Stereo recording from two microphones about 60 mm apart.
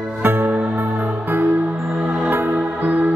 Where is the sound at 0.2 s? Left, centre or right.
Right.